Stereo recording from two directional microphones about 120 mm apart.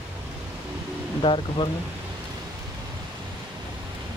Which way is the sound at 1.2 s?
45° left (ahead or behind).